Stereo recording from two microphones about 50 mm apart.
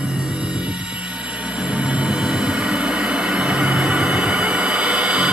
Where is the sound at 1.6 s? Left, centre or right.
Centre.